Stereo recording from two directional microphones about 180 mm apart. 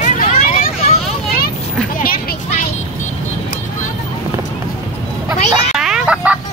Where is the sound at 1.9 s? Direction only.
55° left (ahead or behind).